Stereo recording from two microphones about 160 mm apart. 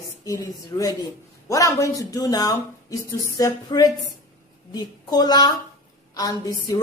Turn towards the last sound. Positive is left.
turn(degrees=25)  # may be behind; listen again after turning